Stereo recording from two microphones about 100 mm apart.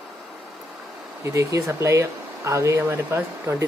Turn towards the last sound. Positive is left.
turn(degrees=-20)  # may be behind; listen again after turning